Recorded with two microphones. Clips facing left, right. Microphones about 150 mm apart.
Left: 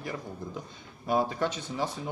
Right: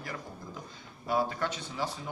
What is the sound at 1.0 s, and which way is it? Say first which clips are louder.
Speech: left 3 dB; 20° left (ahead or behind).